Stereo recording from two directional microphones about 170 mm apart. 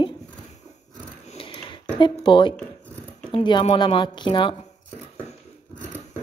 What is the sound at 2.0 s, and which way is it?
Speech, 30° left (ahead or behind).